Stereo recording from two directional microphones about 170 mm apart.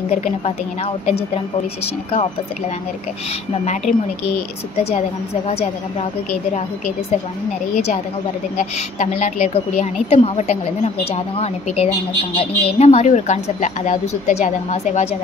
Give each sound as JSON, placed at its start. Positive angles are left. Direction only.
{"t": 1.0, "sound": "a woman's voice", "side_deg": 35}
{"t": 4.9, "sound": "a woman's voice", "side_deg": 40}
{"t": 7.7, "sound": "a woman's voice", "side_deg": 45}